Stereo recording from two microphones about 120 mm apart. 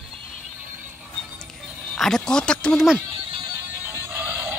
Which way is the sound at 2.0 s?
5° left (ahead or behind).